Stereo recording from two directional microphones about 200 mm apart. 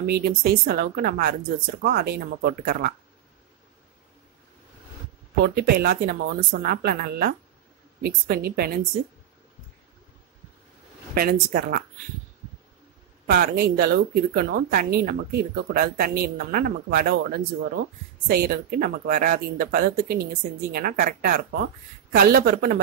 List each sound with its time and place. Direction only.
0.0 s speech: 50° right (ahead or behind)
5.4 s speech: 50° right (ahead or behind)
11.1 s speech: 50° right (ahead or behind)
13.3 s speech: 50° right (ahead or behind)